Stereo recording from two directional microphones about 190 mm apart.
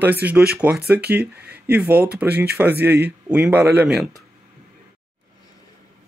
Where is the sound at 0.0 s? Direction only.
10° right (ahead or behind).